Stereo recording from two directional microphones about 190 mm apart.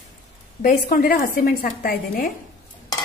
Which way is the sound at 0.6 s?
50° left (ahead or behind).